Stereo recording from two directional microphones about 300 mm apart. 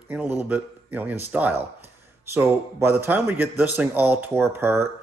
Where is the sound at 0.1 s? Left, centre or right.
Centre.